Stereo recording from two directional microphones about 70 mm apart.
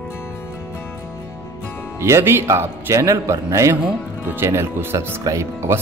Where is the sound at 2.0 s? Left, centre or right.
Right.